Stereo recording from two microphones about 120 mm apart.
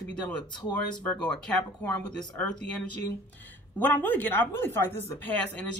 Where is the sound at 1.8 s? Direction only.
15° left (ahead or behind).